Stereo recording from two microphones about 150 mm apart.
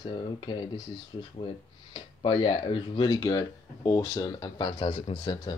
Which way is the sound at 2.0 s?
30° left (ahead or behind).